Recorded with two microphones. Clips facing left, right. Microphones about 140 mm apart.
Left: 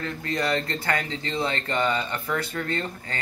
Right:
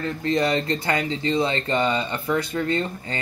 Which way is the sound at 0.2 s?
20° right (ahead or behind).